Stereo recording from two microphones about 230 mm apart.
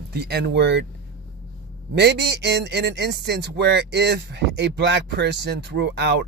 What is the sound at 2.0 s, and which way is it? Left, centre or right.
Speech, right.